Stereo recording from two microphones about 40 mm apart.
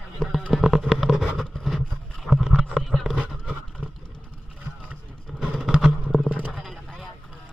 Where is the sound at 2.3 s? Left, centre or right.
Centre.